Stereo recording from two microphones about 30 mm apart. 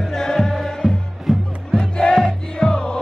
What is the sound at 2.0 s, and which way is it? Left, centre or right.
Music, left.